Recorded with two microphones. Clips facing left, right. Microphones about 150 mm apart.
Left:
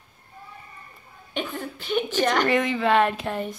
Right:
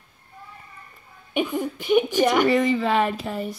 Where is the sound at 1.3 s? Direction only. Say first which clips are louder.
Right 6 dB; 15° right (ahead or behind).